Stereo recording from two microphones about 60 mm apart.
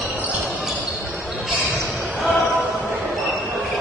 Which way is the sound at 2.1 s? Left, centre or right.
Centre.